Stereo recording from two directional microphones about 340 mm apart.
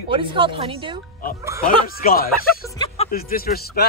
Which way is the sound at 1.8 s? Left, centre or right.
Left.